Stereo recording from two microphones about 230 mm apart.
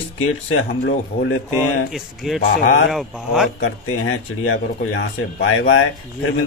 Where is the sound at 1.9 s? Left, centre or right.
Centre.